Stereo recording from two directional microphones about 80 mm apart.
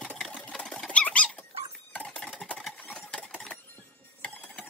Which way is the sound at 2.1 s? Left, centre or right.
Centre.